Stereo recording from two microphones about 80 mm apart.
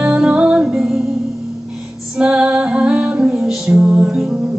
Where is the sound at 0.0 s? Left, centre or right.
Centre.